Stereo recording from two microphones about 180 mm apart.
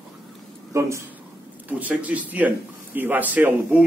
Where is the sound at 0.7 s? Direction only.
15° right (ahead or behind).